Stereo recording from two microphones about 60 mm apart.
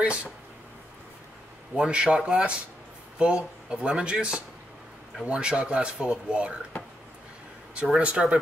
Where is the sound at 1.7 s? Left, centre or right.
Centre.